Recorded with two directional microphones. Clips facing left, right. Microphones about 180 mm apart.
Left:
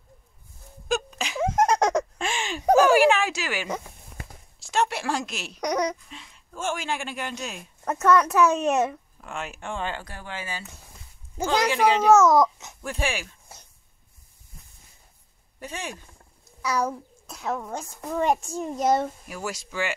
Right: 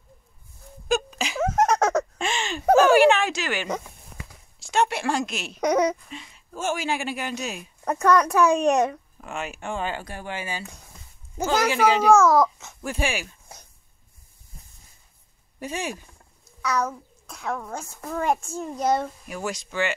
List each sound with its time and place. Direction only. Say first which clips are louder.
0.8 s a sound: right 3 dB; centre (ahead or behind)
1.4 s a sound: even; 10° left (ahead or behind)
4.6 s speech: right 2 dB; centre (ahead or behind)
5.7 s speech: right 5 dB; 25° right (ahead or behind)
6.0 s speech: right 5 dB; 5° right (ahead or behind)
8.0 s speech: even; 5° left (ahead or behind)
8.3 s a child's voice: right 2 dB; 15° right (ahead or behind)
11.4 s speech: right 1 dB; 5° right (ahead or behind)
12.1 s a child's voice: even; 25° left (ahead or behind)
12.8 s speech: right 2 dB; 5° right (ahead or behind)
15.6 s a child's voice: right 5 dB; 10° right (ahead or behind)
17.8 s speech: left 1 dB; 10° left (ahead or behind)